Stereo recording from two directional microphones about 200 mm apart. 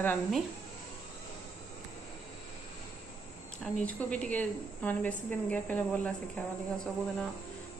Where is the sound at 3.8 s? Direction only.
10° left (ahead or behind).